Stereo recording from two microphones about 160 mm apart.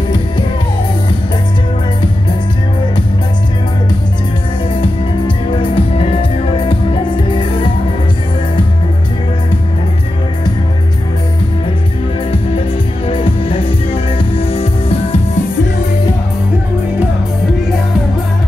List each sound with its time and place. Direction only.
5.8 s music: 35° left (ahead or behind)
13.0 s music: 35° left (ahead or behind)